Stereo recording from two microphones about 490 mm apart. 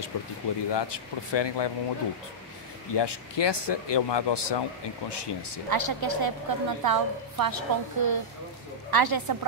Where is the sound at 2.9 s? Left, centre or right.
Left.